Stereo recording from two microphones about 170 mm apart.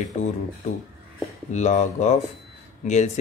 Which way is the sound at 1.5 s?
45° left (ahead or behind).